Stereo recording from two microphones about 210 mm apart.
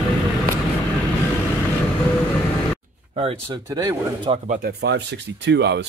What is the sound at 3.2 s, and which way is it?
Speech, 25° right (ahead or behind).